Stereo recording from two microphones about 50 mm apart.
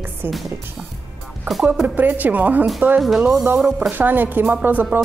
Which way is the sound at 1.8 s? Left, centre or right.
Right.